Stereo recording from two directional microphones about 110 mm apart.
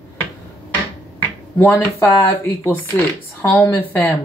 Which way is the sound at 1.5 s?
20° left (ahead or behind).